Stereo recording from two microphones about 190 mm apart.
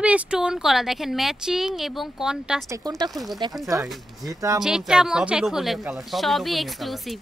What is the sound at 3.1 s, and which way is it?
Speech, centre (ahead or behind).